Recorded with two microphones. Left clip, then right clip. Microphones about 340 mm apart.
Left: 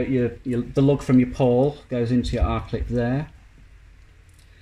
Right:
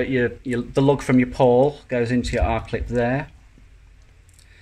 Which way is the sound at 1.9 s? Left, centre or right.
Right.